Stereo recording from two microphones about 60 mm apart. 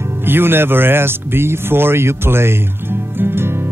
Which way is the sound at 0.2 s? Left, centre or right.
Right.